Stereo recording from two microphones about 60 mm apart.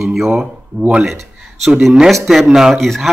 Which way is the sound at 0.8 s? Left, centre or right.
Right.